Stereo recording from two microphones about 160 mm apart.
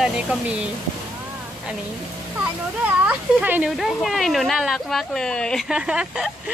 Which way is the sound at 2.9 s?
10° right (ahead or behind).